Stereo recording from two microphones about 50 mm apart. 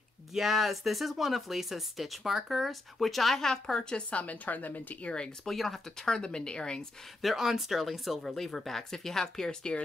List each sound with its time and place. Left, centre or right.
0.3 s speech: centre
4.1 s a woman's voice: left
5.4 s speech: centre
7.2 s speech: centre